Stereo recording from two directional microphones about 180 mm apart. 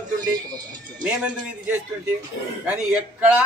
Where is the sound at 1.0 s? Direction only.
5° right (ahead or behind).